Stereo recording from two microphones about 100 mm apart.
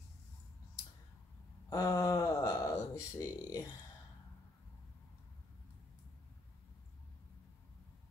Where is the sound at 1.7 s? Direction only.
35° left (ahead or behind).